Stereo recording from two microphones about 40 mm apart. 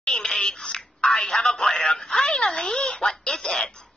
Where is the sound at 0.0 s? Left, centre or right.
Centre.